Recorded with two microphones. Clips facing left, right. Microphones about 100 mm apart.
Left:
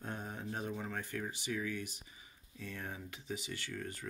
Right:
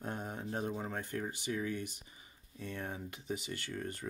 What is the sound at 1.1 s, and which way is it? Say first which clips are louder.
Speech: right 2 dB; 45° right (ahead or behind).